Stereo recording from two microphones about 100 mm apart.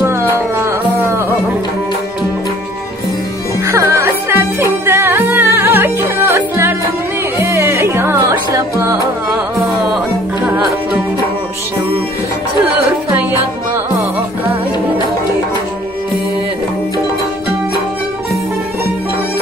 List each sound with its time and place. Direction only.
0.0 s music: 25° right (ahead or behind)
3.6 s music: 30° right (ahead or behind)